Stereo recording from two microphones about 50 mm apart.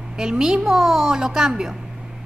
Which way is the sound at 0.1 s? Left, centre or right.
Centre.